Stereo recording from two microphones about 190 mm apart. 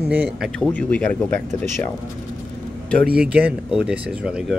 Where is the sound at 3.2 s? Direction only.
5° right (ahead or behind).